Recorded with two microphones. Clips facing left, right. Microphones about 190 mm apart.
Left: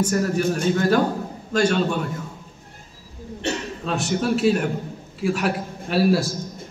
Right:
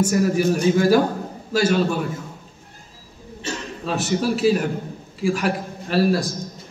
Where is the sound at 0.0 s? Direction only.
10° right (ahead or behind).